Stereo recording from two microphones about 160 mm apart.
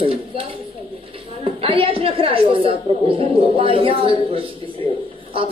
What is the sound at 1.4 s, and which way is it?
A woman's voice, 35° right (ahead or behind).